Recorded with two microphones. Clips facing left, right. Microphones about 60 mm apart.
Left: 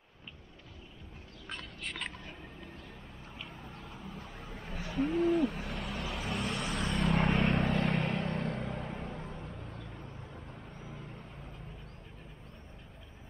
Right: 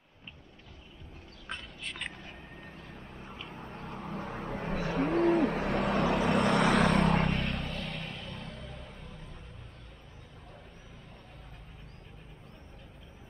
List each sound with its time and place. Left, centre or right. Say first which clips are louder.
3.3 s vehicle: right 2 dB; centre
3.7 s owl: right 6 dB; right
7.2 s vehicle: left 2 dB; centre
7.5 s vehicle: left 8 dB; left